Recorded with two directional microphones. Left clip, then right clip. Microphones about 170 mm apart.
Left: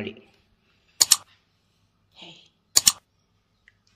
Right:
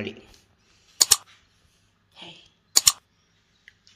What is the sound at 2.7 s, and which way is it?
Typing, centre (ahead or behind).